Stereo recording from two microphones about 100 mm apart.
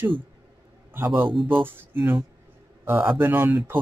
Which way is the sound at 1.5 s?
20° right (ahead or behind).